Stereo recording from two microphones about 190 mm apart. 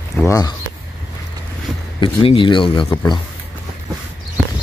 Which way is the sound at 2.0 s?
25° left (ahead or behind).